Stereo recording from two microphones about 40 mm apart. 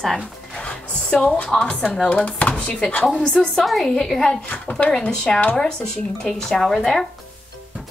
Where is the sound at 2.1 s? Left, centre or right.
Left.